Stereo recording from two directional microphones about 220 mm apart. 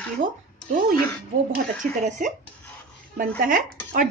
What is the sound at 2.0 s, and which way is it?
A woman's voice, 35° right (ahead or behind).